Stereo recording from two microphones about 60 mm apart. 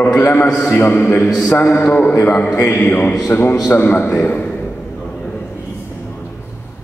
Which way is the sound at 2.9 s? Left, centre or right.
Left.